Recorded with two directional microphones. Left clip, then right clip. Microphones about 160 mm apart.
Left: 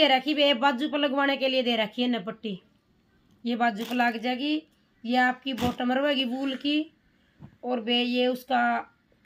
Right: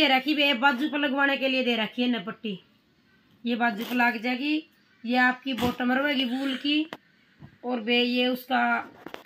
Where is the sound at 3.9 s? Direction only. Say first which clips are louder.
Right 1 dB; 40° left (ahead or behind).